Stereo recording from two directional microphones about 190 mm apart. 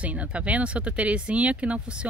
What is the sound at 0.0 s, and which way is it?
Speech, 5° right (ahead or behind).